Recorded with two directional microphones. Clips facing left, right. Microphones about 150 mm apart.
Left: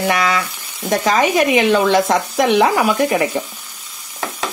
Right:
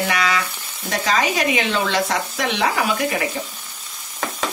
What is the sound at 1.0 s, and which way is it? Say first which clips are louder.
Sizzle: left 5 dB; 55° left (ahead or behind).